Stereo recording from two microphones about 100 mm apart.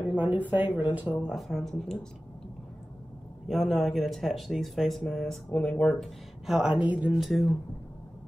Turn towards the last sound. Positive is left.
turn(degrees=0)  # may be behind; listen again after turning